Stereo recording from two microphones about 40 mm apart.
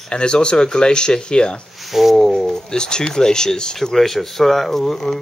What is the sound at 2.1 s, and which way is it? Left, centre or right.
Speech, centre.